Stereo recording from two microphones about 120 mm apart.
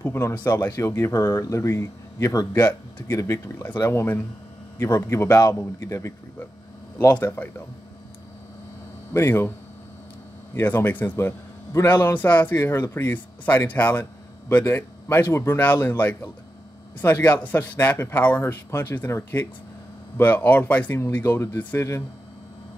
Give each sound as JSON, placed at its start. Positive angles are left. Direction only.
{"t": 0.0, "sound": "a man's voice", "side_deg": 15}
{"t": 9.1, "sound": "speech", "side_deg": 20}
{"t": 10.5, "sound": "a man's voice", "side_deg": 15}